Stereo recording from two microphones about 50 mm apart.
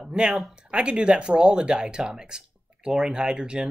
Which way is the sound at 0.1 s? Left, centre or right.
Centre.